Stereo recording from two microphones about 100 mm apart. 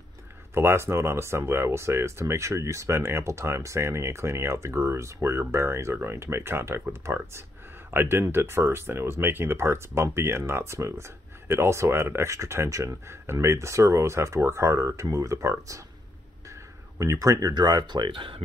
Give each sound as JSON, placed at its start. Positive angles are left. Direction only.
{"t": 0.6, "sound": "speech", "side_deg": -25}
{"t": 17.0, "sound": "speech", "side_deg": -30}
{"t": 17.8, "sound": "speech", "side_deg": -50}